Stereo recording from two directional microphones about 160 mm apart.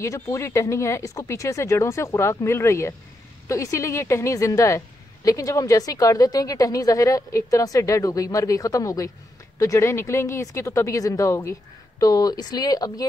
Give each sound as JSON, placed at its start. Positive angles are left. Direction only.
{"t": 0.0, "sound": "a woman's voice", "side_deg": 20}